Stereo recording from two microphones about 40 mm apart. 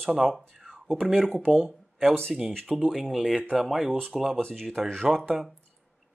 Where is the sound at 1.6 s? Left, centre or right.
Centre.